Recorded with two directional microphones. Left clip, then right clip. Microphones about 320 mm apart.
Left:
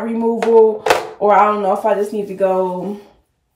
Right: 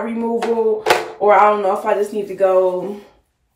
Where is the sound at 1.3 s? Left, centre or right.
Centre.